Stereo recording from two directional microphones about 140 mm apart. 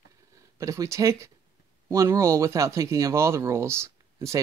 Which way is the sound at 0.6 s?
20° right (ahead or behind).